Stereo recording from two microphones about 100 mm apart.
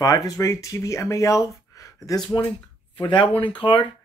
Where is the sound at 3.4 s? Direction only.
60° left (ahead or behind).